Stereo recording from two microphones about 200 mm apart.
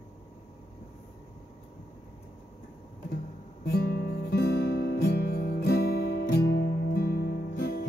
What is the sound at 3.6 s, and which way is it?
Music, 55° left (ahead or behind).